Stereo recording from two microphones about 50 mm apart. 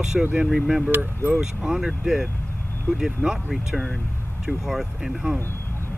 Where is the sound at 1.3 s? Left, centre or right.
Centre.